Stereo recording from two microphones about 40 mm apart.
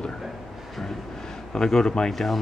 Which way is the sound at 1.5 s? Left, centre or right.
Centre.